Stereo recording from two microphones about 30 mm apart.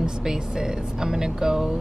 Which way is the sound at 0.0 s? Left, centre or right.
Centre.